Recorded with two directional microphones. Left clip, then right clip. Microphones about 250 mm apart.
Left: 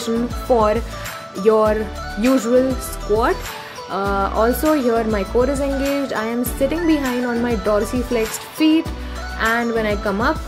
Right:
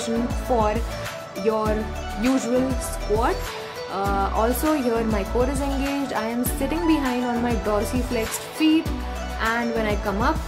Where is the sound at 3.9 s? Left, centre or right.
Centre.